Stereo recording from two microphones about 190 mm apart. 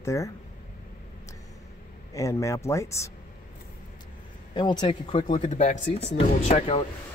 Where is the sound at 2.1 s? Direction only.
15° left (ahead or behind).